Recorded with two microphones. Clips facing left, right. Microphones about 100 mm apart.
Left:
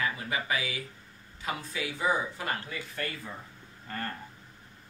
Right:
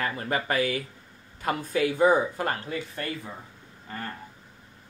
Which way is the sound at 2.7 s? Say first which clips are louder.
Right 5 dB; 25° right (ahead or behind).